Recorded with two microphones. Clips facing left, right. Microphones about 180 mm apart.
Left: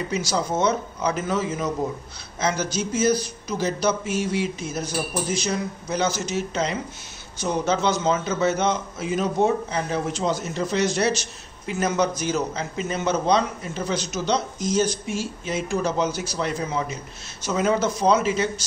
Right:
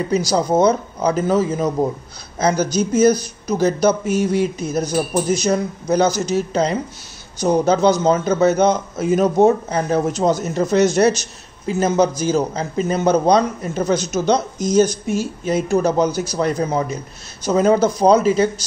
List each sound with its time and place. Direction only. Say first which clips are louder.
0.1 s a man's voice: right 9 dB; 35° right (ahead or behind)
11.8 s a man's voice: right 6 dB; 30° right (ahead or behind)